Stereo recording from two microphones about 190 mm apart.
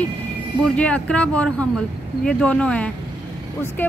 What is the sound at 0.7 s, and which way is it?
Speech, 5° left (ahead or behind).